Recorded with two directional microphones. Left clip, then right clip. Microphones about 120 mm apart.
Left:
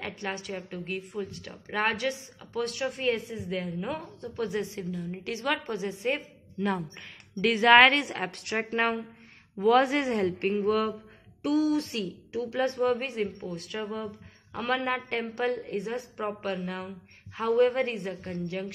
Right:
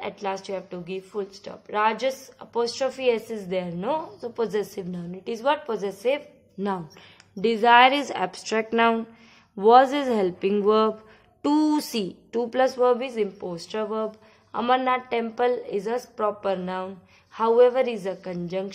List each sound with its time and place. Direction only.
0.0 s a woman's voice: 45° right (ahead or behind)
6.6 s a woman's voice: 20° right (ahead or behind); by 9.0 s 55° right (ahead or behind)
9.6 s a woman's voice: 30° right (ahead or behind)
10.4 s a woman's voice: 55° right (ahead or behind)
11.4 s a woman's voice: 90° right; by 18.7 s 55° right (ahead or behind)